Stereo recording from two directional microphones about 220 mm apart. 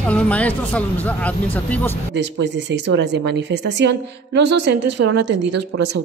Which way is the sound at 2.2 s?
55° right (ahead or behind).